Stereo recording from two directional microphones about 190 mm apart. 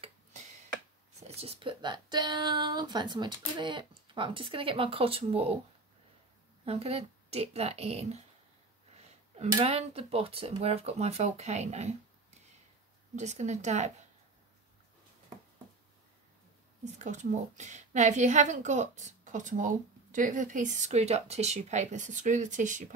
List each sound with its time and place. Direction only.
1.2 s speech: 30° right (ahead or behind)
6.6 s a woman's voice: 30° right (ahead or behind)
9.4 s a woman's voice: 30° right (ahead or behind)
13.1 s a woman's voice: 40° right (ahead or behind)
16.8 s a woman's voice: 40° right (ahead or behind)